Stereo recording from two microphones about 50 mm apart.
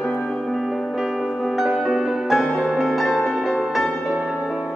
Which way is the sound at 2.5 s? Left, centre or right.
Centre.